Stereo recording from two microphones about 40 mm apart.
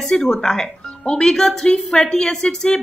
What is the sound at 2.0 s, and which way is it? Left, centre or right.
Speech, left.